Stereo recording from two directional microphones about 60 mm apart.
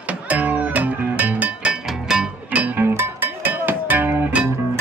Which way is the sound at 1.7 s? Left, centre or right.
Centre.